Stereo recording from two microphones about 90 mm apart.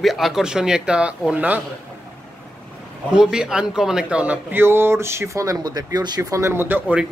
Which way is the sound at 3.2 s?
5° right (ahead or behind).